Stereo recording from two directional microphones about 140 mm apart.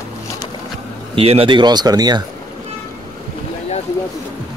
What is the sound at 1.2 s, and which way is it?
Speech, 45° right (ahead or behind).